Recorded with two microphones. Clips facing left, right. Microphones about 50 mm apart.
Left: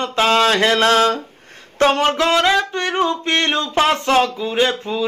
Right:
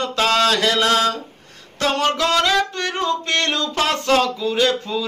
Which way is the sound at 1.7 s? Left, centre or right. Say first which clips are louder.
Left 4 dB; left.